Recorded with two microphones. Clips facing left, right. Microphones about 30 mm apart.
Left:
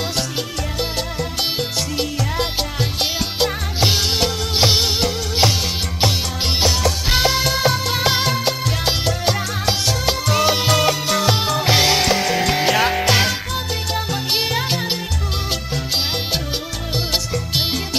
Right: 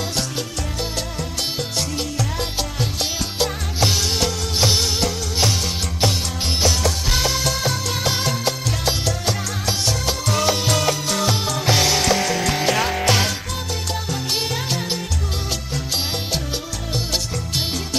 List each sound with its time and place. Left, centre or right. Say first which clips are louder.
1.6 s music: left 3 dB; left
7.1 s music: left 6 dB; left
16.9 s music: left 3 dB; left